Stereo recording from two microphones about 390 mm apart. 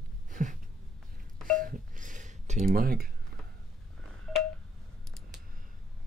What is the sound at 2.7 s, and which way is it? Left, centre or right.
Speech, right.